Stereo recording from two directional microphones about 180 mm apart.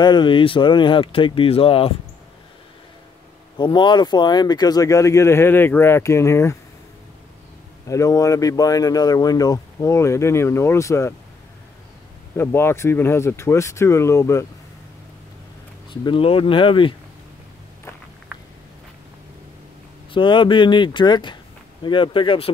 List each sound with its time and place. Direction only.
0.0 s speech: 25° left (ahead or behind)
3.5 s speech: 25° left (ahead or behind)
7.9 s speech: 15° left (ahead or behind)
12.4 s speech: 15° left (ahead or behind)
15.9 s speech: 25° left (ahead or behind)
20.1 s speech: 25° left (ahead or behind)